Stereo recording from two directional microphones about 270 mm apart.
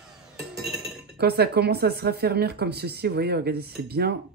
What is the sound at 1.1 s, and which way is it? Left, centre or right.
Speech, right.